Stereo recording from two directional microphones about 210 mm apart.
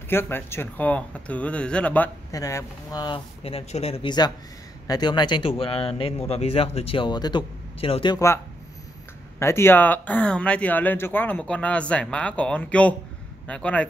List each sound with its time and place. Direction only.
0.1 s speech: 10° left (ahead or behind)
9.4 s speech: 10° left (ahead or behind)